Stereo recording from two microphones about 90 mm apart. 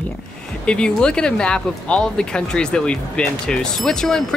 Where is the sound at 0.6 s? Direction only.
10° left (ahead or behind).